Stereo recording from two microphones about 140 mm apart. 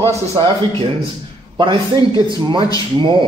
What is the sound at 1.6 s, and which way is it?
A man's voice, 35° right (ahead or behind).